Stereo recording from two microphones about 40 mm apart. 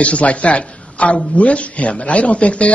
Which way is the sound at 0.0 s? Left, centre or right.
Left.